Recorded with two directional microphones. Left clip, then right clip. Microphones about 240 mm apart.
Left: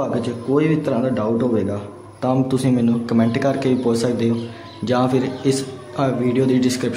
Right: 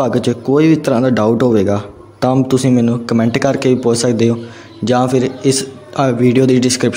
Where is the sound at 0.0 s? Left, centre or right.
Right.